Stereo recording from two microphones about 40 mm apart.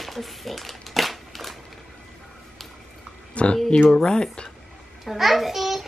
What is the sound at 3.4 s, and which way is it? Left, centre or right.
Speech, left.